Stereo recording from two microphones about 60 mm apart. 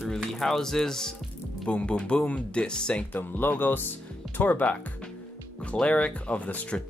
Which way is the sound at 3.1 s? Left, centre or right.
Left.